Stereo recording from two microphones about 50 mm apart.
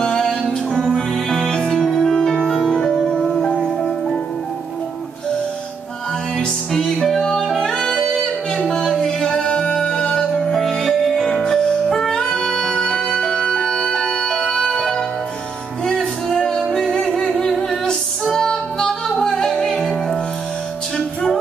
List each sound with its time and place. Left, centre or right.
0.0 s music: centre
2.7 s music: centre
6.3 s music: centre
17.2 s a sound: centre
18.2 s music: centre